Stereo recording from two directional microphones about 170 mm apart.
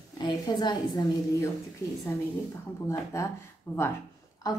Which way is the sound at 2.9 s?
20° left (ahead or behind).